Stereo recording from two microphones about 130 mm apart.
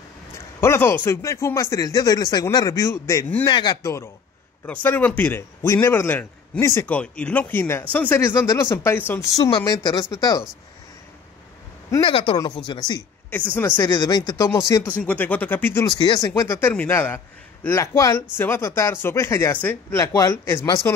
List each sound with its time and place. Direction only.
0.6 s speech: 20° left (ahead or behind)
3.4 s speech: 35° left (ahead or behind)
4.6 s a man's voice: 15° left (ahead or behind)
9.3 s speech: 30° left (ahead or behind)
12.0 s speech: 40° left (ahead or behind)
14.9 s a man's voice: 10° left (ahead or behind)
15.8 s speech: 35° left (ahead or behind)
16.2 s speech: 25° left (ahead or behind)
16.5 s a man's voice: 15° left (ahead or behind)